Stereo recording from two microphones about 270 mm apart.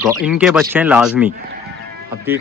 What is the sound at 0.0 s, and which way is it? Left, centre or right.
Speech, centre.